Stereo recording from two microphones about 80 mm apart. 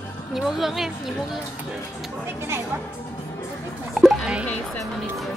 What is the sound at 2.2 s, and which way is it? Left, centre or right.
Speech, right.